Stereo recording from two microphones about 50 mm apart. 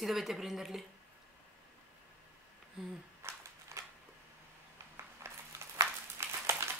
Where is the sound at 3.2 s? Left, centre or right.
Right.